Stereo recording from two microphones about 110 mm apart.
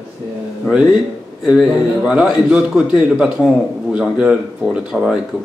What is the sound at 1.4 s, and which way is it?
Speech, 5° right (ahead or behind).